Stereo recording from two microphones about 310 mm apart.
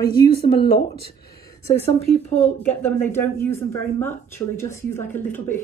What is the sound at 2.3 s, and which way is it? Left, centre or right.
Speech, centre.